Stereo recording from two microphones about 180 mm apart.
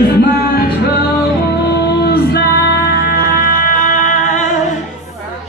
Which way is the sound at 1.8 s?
60° left (ahead or behind).